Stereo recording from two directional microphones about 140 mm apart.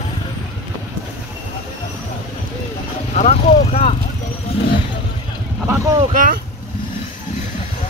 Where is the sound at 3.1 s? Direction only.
55° left (ahead or behind).